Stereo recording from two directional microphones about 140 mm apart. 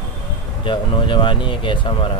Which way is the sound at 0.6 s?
35° left (ahead or behind).